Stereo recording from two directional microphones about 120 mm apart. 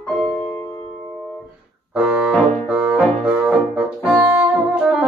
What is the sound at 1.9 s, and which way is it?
Music, 10° right (ahead or behind).